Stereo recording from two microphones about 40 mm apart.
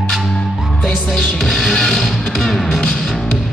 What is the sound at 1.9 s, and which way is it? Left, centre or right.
Music, centre.